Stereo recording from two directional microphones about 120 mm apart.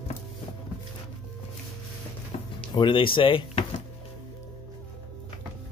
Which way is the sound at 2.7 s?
40° left (ahead or behind).